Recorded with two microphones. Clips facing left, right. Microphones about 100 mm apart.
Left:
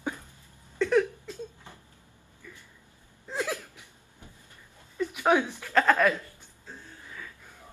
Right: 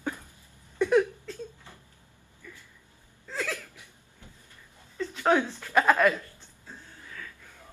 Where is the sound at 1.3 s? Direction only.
15° left (ahead or behind).